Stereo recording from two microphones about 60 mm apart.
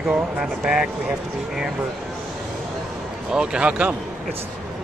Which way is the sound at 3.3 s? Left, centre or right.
Centre.